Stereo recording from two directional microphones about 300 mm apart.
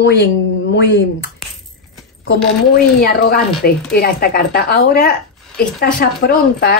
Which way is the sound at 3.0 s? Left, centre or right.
Left.